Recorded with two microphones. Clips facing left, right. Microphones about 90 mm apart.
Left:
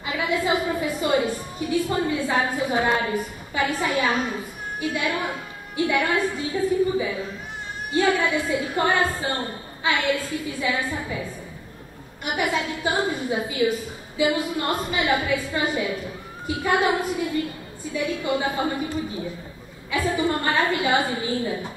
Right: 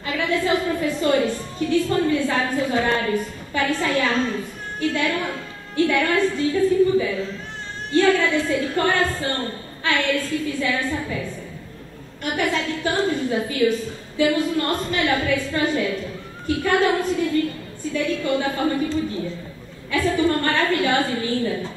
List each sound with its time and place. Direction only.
0.0 s a woman's voice: 15° left (ahead or behind)